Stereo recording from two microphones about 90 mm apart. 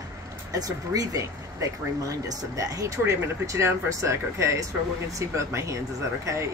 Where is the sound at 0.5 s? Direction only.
40° right (ahead or behind).